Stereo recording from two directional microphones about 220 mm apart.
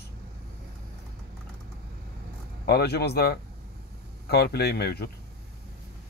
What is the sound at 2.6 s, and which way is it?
Speech, 45° left (ahead or behind).